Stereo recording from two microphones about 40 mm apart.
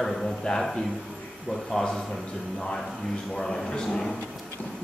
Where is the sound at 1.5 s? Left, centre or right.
Centre.